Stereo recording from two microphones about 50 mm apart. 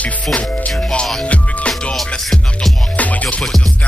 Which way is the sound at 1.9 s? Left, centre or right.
Centre.